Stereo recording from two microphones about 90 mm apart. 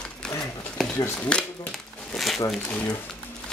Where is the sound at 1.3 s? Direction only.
10° left (ahead or behind).